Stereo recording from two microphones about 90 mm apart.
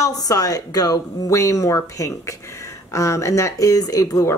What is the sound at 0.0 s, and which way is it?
Speech, 40° left (ahead or behind).